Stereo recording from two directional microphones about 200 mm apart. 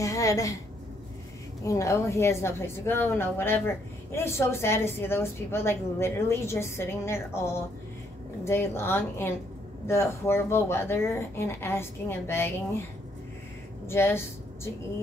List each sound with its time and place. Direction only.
0.0 s a woman's voice: 15° left (ahead or behind)
1.6 s a woman's voice: 15° left (ahead or behind)
13.8 s a woman's voice: 10° left (ahead or behind)